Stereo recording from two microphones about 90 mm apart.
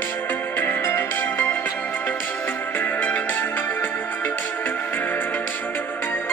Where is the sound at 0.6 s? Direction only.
25° left (ahead or behind).